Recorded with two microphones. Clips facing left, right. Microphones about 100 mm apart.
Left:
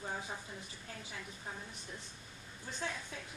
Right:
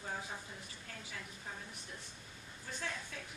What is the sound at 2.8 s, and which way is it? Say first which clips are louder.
Speech: left 2 dB; 25° left (ahead or behind).